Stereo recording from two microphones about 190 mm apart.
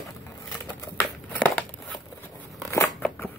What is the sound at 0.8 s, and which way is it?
Crumpling, 10° left (ahead or behind).